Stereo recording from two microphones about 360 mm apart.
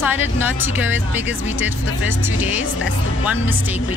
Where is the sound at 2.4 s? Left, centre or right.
Centre.